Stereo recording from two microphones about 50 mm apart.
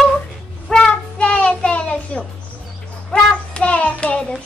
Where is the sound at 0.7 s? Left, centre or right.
Centre.